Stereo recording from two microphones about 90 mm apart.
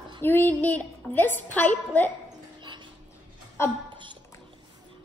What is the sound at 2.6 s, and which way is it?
Dog, 60° right (ahead or behind).